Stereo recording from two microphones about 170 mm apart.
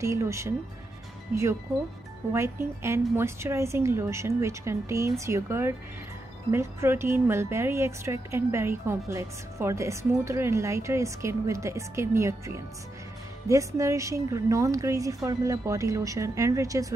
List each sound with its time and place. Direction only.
0.0 s a woman's voice: 15° right (ahead or behind)